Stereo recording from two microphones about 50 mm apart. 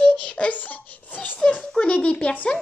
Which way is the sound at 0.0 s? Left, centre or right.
Left.